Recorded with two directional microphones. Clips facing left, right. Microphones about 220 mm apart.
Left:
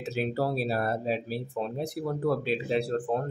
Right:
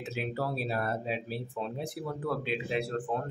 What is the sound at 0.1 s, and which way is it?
Speech, 35° left (ahead or behind).